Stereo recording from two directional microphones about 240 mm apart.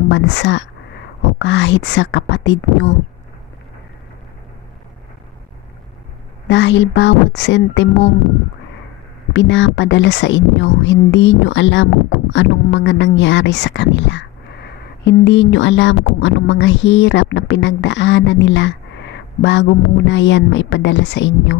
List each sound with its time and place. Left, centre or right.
0.1 s speech: left
6.4 s speech: left
9.3 s speech: left